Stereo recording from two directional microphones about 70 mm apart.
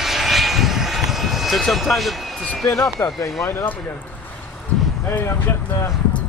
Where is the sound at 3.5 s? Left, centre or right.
Left.